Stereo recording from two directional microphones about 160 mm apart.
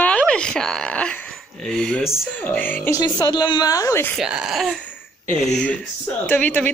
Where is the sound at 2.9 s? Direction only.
20° left (ahead or behind).